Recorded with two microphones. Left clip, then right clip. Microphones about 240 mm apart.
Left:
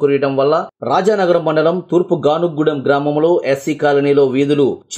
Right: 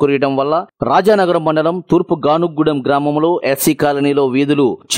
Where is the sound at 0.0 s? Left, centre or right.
Right.